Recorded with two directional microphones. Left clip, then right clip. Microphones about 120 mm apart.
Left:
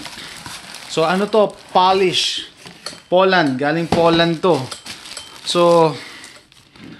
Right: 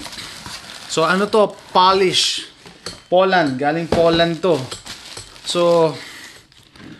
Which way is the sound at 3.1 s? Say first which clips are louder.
Left 1 dB; 30° left (ahead or behind).